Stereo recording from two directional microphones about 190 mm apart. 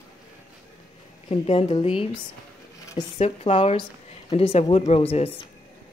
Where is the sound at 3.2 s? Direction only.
35° left (ahead or behind).